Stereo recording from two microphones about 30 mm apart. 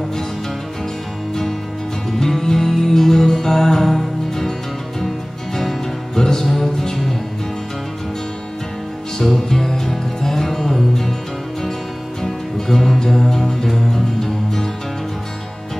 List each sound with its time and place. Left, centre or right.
2.0 s music: centre
9.2 s music: centre
12.2 s music: centre